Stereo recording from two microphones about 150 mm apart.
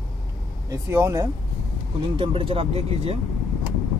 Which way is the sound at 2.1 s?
35° right (ahead or behind).